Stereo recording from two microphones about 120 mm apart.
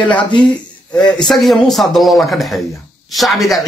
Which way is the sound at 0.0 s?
10° left (ahead or behind).